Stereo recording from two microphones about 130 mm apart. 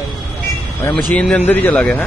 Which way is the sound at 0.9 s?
10° left (ahead or behind).